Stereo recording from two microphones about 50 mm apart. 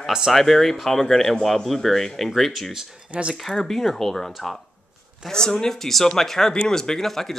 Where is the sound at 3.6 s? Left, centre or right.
Centre.